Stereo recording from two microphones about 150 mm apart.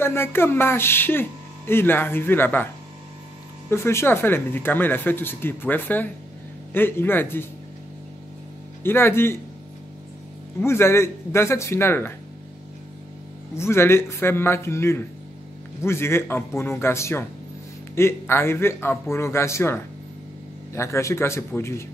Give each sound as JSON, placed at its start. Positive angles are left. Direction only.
{"t": 0.0, "sound": "speech", "side_deg": 15}
{"t": 3.7, "sound": "speech", "side_deg": 15}
{"t": 8.8, "sound": "speech", "side_deg": 15}
{"t": 10.6, "sound": "speech", "side_deg": 15}
{"t": 13.6, "sound": "speech", "side_deg": 15}